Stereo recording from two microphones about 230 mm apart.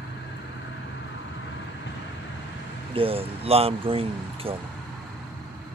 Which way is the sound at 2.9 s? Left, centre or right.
Right.